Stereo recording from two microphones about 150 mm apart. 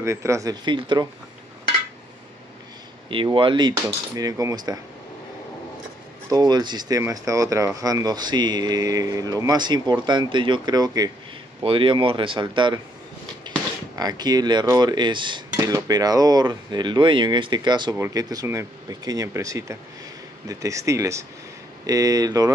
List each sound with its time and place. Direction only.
0.0 s speech: 20° right (ahead or behind)
3.1 s speech: 35° right (ahead or behind)
6.3 s speech: 25° right (ahead or behind)
13.9 s speech: 25° right (ahead or behind)